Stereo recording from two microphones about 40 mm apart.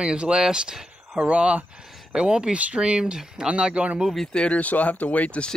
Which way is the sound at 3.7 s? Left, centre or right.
Right.